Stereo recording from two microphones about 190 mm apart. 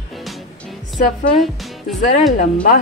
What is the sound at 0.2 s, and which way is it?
Music, centre (ahead or behind).